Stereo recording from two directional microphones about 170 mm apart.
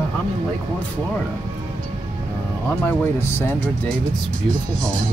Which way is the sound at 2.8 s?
15° left (ahead or behind).